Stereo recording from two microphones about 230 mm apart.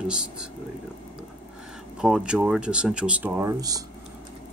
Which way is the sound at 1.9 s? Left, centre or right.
Centre.